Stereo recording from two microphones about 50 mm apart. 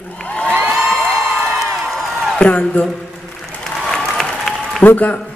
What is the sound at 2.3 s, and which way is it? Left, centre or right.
Speech, left.